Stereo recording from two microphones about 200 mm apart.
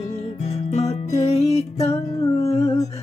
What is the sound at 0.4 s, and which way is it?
Music, 35° left (ahead or behind).